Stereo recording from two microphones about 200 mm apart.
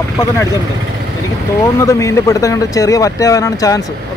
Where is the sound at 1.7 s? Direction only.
15° left (ahead or behind).